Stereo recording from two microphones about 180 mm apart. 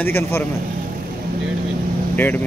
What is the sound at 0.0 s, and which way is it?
Speech, 10° left (ahead or behind).